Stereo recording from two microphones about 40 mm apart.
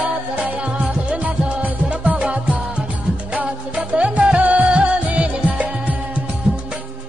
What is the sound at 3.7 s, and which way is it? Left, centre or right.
Music, right.